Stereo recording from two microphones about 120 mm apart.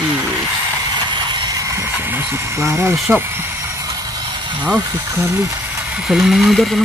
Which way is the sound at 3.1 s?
20° right (ahead or behind).